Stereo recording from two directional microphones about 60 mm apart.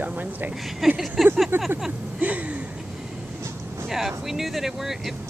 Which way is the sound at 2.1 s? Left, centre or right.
Right.